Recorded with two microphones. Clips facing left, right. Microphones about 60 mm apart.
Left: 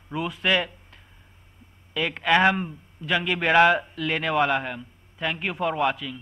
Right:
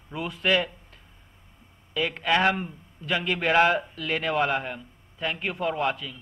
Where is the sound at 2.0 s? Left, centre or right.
Left.